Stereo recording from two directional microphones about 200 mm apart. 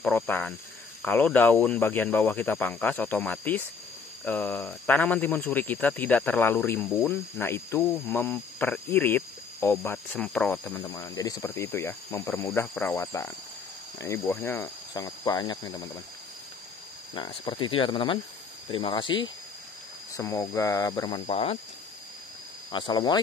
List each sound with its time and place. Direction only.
0.0 s speech: 10° left (ahead or behind)
15.0 s speech: 20° left (ahead or behind)
17.1 s speech: 25° left (ahead or behind)
21.3 s speech: 35° left (ahead or behind)
22.7 s speech: 20° left (ahead or behind)